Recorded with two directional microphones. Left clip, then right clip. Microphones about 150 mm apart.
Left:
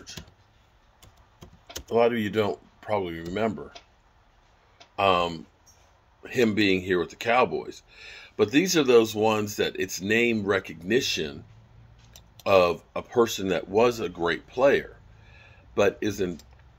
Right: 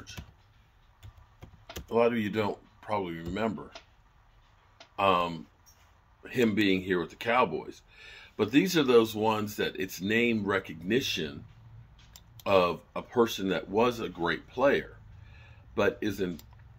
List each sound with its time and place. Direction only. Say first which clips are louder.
1.9 s speech: left 4 dB; 25° left (ahead or behind)
4.9 s speech: left 3 dB; 20° left (ahead or behind)
12.4 s speech: left 5 dB; 20° left (ahead or behind)
15.3 s a sound: left 5 dB; 15° left (ahead or behind)